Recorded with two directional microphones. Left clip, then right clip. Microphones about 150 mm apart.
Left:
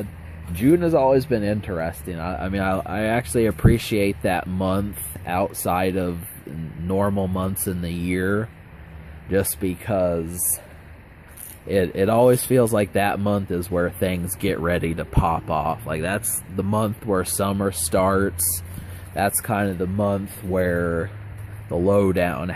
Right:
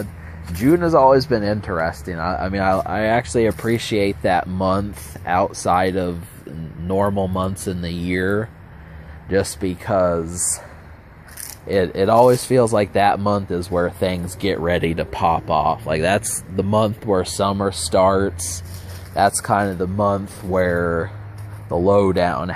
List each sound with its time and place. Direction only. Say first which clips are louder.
0.7 s speech: right 4 dB; 25° left (ahead or behind)
11.6 s speech: right 3 dB; 25° left (ahead or behind)
14.9 s speech: right 5 dB; 10° left (ahead or behind)
15.9 s speech: right 7 dB; centre (ahead or behind)
16.5 s speech: right 6 dB; 15° left (ahead or behind); by 18.3 s 35° left (ahead or behind)
19.1 s speech: right 6 dB; 25° left (ahead or behind)